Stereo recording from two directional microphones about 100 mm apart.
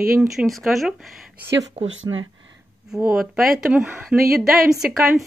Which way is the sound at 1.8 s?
90° right.